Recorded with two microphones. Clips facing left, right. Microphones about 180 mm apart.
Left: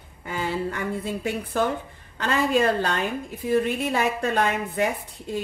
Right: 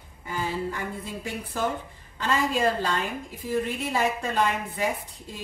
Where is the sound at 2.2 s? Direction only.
65° left (ahead or behind).